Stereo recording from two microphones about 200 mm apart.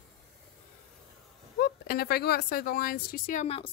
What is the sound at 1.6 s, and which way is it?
A woman's voice, 50° left (ahead or behind).